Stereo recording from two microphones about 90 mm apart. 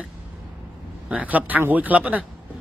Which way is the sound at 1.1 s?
15° right (ahead or behind).